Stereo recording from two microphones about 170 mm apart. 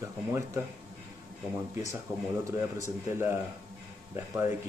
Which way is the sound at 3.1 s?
15° right (ahead or behind).